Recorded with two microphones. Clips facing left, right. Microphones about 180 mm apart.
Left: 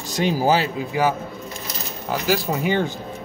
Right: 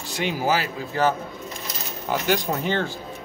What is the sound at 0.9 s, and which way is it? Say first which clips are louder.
A man's voice: right 1 dB; 10° left (ahead or behind).